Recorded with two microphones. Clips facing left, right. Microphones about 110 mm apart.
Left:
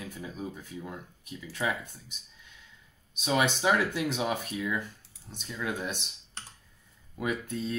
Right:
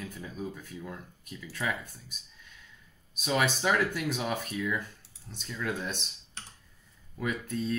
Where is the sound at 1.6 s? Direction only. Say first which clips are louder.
Left 2 dB; 15° left (ahead or behind).